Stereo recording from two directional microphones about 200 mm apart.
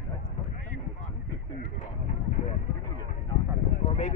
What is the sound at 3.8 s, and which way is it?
Speech, 30° left (ahead or behind).